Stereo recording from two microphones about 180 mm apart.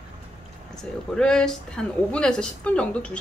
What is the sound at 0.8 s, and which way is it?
Speech, 5° left (ahead or behind).